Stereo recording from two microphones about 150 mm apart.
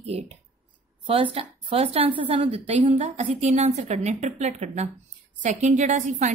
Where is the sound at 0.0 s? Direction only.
45° right (ahead or behind).